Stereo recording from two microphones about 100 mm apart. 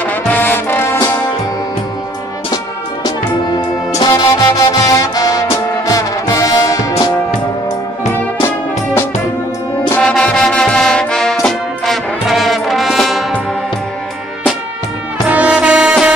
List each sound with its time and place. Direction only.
0.0 s brass instrument: 15° left (ahead or behind)
4.1 s music: 35° left (ahead or behind)
8.4 s music: 25° left (ahead or behind)
10.0 s music: 5° left (ahead or behind)
11.4 s brass instrument: centre (ahead or behind)
15.2 s music: 15° right (ahead or behind)